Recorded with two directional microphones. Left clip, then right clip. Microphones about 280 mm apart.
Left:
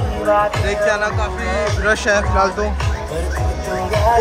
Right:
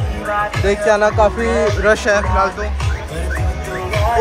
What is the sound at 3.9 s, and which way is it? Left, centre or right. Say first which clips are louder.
Music: left 2 dB; left.